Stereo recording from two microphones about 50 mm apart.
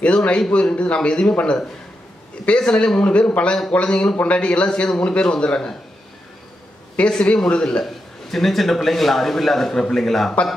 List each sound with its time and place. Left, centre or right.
0.0 s a man's voice: left
2.4 s a man's voice: left
7.0 s a man's voice: left
7.8 s a man's voice: centre